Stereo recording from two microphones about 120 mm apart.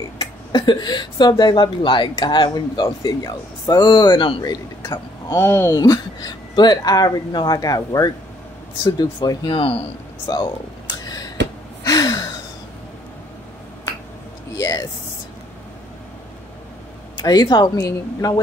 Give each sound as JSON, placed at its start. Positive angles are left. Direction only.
{"t": 0.2, "sound": "speech", "side_deg": 35}
{"t": 5.4, "sound": "speech", "side_deg": 20}
{"t": 5.7, "sound": "speech", "side_deg": 30}
{"t": 10.2, "sound": "a sound", "side_deg": 35}
{"t": 11.8, "sound": "gasp", "side_deg": 30}
{"t": 14.6, "sound": "a sound", "side_deg": 30}
{"t": 17.2, "sound": "speech", "side_deg": 35}